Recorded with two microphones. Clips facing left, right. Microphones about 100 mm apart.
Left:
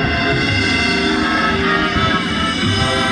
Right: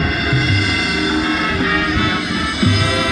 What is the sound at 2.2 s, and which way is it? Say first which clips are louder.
Music: even; 15° right (ahead or behind).